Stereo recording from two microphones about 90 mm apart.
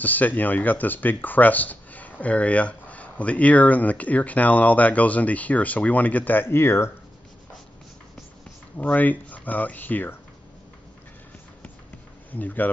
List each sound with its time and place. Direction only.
0.0 s speech: 20° left (ahead or behind)
8.7 s speech: 15° left (ahead or behind)
12.3 s speech: 20° left (ahead or behind)